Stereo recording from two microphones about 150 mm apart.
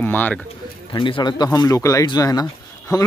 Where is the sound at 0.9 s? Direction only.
30° left (ahead or behind).